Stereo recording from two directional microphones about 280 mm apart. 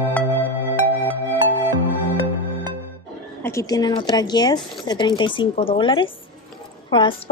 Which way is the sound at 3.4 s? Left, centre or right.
Centre.